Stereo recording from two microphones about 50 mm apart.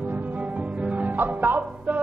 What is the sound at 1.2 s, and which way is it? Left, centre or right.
Music, right.